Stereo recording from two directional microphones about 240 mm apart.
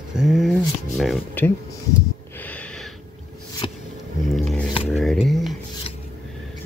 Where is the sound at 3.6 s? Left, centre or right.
Left.